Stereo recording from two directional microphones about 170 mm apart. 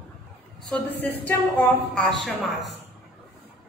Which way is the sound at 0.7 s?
10° left (ahead or behind).